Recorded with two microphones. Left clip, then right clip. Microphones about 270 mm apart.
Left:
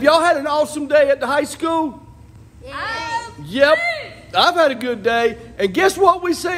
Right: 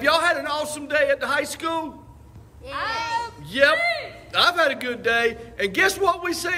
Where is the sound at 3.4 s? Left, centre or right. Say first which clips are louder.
Left 4 dB; centre.